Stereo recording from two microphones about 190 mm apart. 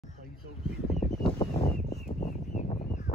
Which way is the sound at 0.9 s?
35° left (ahead or behind).